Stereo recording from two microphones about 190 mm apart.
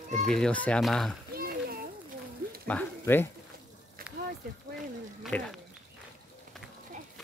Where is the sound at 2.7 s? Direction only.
10° left (ahead or behind).